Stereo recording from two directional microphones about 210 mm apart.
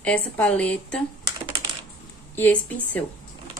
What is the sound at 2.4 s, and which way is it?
Speech, 10° left (ahead or behind).